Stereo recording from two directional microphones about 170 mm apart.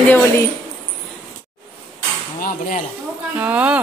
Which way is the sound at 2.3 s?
55° left (ahead or behind).